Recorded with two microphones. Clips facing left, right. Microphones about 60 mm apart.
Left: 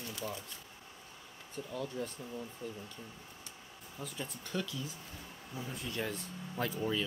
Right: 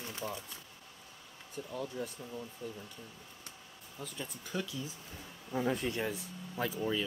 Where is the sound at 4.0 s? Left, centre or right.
Centre.